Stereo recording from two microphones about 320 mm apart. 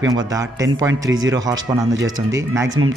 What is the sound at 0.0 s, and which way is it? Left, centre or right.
A man's voice, centre.